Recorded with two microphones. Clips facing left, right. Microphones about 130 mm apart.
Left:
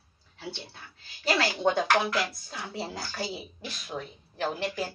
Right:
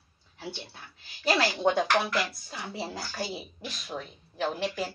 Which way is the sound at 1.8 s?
5° left (ahead or behind).